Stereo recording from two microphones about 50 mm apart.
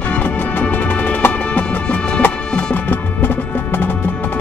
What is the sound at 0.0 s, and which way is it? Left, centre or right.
Music, left.